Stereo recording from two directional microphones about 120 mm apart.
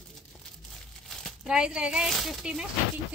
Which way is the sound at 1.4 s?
5° right (ahead or behind).